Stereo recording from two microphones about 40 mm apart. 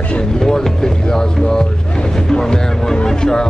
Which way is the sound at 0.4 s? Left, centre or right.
Centre.